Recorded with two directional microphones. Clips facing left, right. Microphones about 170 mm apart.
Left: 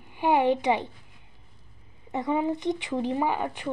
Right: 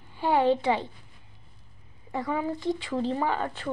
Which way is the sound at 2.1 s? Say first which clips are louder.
Left 3 dB; 20° left (ahead or behind).